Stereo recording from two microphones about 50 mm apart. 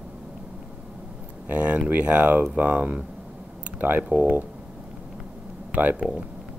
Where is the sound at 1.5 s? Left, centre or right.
Right.